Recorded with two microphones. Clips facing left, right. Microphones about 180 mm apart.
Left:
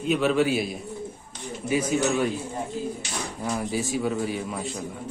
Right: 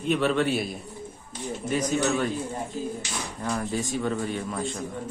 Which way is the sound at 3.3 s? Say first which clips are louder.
Left 1 dB; 15° left (ahead or behind).